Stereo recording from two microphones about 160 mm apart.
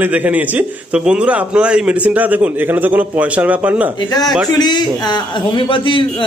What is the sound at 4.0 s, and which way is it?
A man's voice, 25° left (ahead or behind).